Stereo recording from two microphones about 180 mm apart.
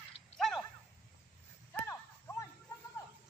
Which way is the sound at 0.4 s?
Centre (ahead or behind).